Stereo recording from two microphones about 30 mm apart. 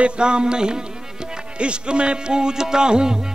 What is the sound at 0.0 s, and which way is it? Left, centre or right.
Music, right.